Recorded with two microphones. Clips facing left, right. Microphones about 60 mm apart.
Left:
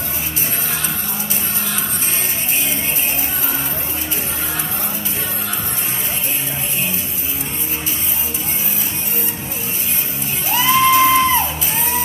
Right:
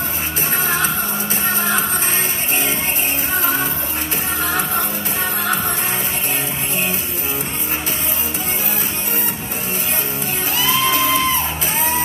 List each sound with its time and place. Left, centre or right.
0.7 s music: right
10.5 s music: left